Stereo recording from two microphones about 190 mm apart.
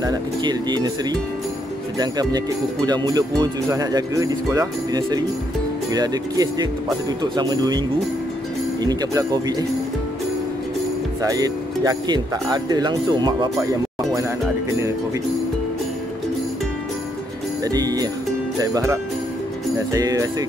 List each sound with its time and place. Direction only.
0.0 s speech: 20° right (ahead or behind)
2.0 s speech: 20° right (ahead or behind)
8.8 s speech: 20° right (ahead or behind)
11.2 s speech: 20° right (ahead or behind)
17.6 s speech: 20° right (ahead or behind)